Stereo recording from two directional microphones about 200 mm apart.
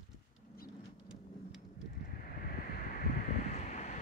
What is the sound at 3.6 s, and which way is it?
Wind noise, 35° left (ahead or behind).